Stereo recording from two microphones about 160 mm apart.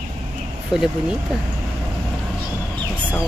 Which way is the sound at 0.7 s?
5° right (ahead or behind).